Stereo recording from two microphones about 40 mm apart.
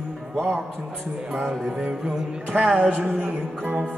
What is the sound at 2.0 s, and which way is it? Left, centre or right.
Music, centre.